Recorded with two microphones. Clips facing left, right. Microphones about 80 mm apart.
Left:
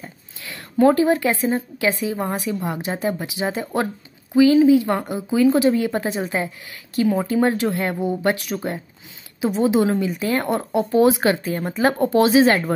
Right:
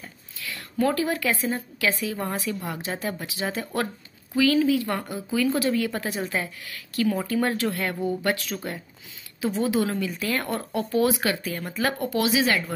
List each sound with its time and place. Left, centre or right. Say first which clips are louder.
0.0 s speech: left 1 dB; left